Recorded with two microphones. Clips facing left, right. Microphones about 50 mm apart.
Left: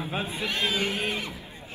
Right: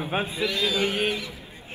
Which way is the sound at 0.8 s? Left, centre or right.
Right.